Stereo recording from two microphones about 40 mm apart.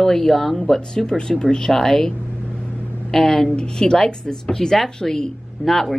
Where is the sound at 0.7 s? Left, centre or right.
Centre.